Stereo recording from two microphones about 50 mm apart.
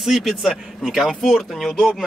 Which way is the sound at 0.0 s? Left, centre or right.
Centre.